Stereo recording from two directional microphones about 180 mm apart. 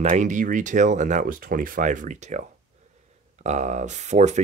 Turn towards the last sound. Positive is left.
turn(degrees=-40)  # may be behind; listen again after turning